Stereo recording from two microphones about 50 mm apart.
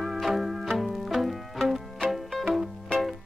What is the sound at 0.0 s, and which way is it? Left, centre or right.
Music, centre.